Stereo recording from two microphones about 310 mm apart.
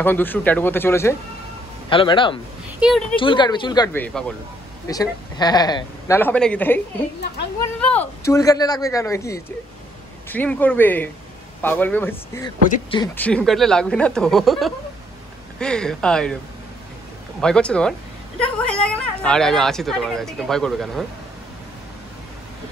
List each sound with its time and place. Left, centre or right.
0.0 s speech: centre
2.8 s speech: centre
3.2 s speech: centre
7.8 s speech: centre
12.6 s speech: left
13.0 s speech: centre
17.4 s speech: centre